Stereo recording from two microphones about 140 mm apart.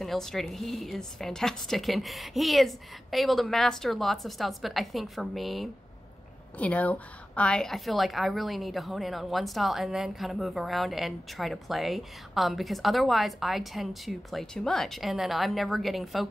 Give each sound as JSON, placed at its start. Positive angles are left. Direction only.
{"t": 0.0, "sound": "a woman's voice", "side_deg": 0}
{"t": 6.6, "sound": "a woman's voice", "side_deg": 10}